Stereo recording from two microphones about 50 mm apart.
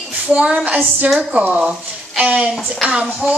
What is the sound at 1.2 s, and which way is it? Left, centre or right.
A woman's voice, right.